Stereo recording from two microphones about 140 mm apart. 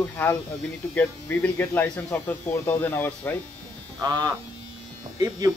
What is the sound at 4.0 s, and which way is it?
Speech, 25° right (ahead or behind).